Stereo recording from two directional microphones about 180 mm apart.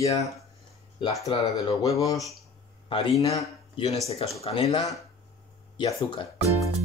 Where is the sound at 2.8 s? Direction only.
30° left (ahead or behind).